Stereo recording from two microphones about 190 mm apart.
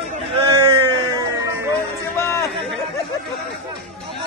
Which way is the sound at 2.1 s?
15° left (ahead or behind).